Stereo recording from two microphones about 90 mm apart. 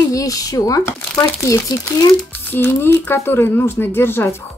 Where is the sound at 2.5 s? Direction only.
25° left (ahead or behind).